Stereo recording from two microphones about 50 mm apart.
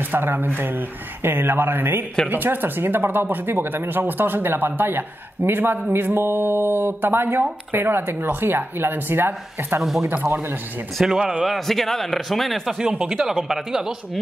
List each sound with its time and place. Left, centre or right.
0.0 s speech: right
11.0 s speech: centre
13.0 s speech: centre